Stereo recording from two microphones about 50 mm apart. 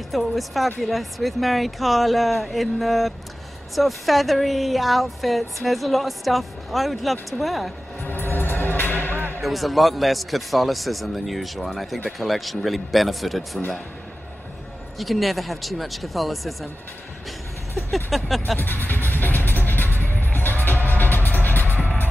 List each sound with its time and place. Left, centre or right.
0.1 s speech: centre
8.0 s music: left
9.4 s speech: centre
15.0 s speech: centre
17.9 s speech: centre
18.6 s music: left
21.6 s music: right